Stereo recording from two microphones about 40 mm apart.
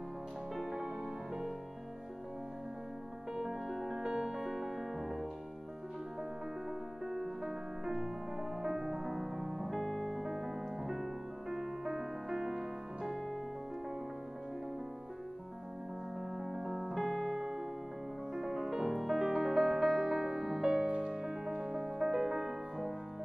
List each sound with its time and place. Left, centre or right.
0.6 s music: centre
3.6 s music: centre
7.1 s music: centre
9.8 s piano: centre
11.5 s music: centre
16.4 s music: centre
17.1 s piano: centre
17.4 s music: centre